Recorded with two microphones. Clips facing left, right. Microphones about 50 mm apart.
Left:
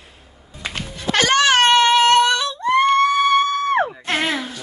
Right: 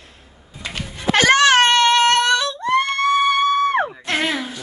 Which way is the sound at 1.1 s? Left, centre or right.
Centre.